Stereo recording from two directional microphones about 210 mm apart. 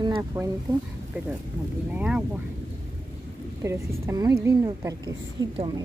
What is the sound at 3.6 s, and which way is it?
A woman's voice, 15° right (ahead or behind).